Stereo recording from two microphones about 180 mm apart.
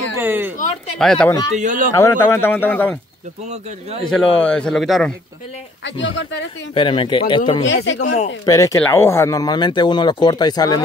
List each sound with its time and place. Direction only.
0.2 s a sound: 10° right (ahead or behind)
0.9 s a man's voice: 5° left (ahead or behind)
1.6 s speech: 45° right (ahead or behind)
1.9 s speech: 15° left (ahead or behind)
4.0 s a man's voice: 5° left (ahead or behind)
5.9 s speech: 90° left
6.7 s speech: 30° left (ahead or behind)
7.6 s speech: 90° left
8.5 s speech: 15° left (ahead or behind)